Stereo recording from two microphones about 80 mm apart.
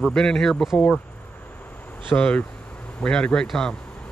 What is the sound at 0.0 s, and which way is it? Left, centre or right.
Speech, centre.